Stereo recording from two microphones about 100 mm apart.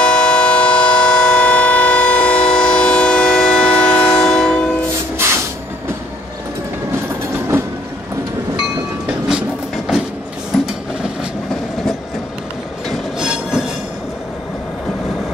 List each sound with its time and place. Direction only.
0.0 s train: 10° left (ahead or behind)
5.1 s vehicle: 25° right (ahead or behind)
13.2 s train: 5° right (ahead or behind)